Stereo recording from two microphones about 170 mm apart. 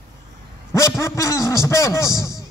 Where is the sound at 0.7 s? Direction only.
15° left (ahead or behind).